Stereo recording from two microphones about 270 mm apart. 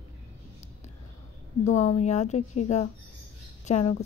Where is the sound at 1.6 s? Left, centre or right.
Left.